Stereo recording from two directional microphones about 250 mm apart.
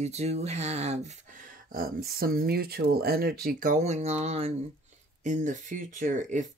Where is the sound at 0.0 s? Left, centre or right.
Right.